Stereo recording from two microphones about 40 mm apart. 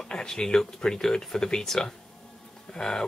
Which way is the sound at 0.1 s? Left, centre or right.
Left.